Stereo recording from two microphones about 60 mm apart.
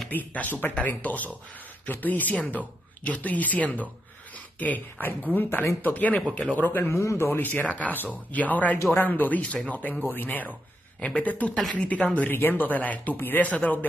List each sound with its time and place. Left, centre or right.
0.1 s speech: left
6.6 s speech: left
7.0 s speech: left
11.0 s speech: centre
12.3 s speech: left